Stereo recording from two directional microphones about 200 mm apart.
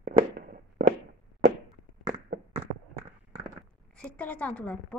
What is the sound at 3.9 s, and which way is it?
A woman's voice, 5° left (ahead or behind).